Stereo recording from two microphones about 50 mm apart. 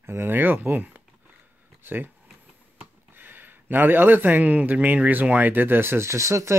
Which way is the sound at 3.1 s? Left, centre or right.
Right.